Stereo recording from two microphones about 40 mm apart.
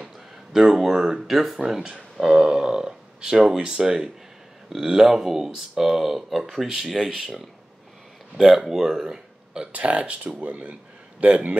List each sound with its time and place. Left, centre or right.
0.0 s speech: centre
1.7 s speech: centre
8.4 s speech: centre
9.7 s a man's voice: right